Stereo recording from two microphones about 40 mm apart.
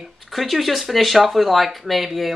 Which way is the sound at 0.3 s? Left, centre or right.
Centre.